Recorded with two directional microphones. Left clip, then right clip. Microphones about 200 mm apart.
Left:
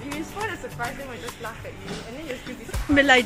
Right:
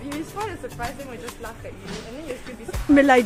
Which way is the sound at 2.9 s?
45° right (ahead or behind).